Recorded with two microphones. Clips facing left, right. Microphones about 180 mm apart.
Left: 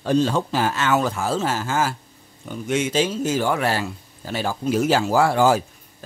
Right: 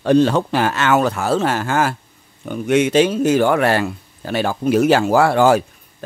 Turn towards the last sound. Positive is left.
turn(degrees=-65)  # may be behind; listen again after turning